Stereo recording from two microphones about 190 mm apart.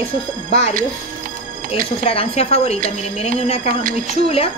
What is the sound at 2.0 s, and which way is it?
A woman's voice, 30° left (ahead or behind).